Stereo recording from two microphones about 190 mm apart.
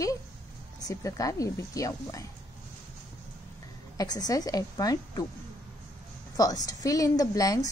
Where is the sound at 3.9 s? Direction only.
20° left (ahead or behind).